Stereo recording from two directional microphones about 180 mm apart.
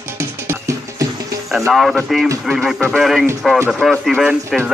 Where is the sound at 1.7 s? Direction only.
Centre (ahead or behind).